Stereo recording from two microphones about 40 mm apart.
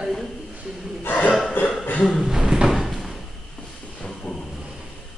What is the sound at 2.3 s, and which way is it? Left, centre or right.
Drawer open or close, centre.